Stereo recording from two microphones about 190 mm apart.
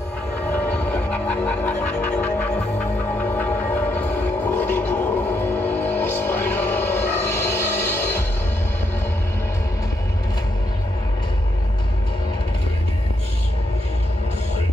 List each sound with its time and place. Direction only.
0.5 s music: 10° left (ahead or behind)
3.3 s music: 10° left (ahead or behind)
4.6 s gargling: 10° left (ahead or behind)
5.6 s music: 10° left (ahead or behind)